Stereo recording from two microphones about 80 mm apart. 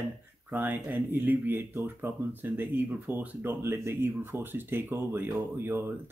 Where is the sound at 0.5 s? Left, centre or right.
Right.